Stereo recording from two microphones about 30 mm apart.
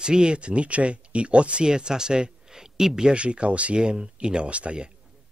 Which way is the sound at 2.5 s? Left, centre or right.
Centre.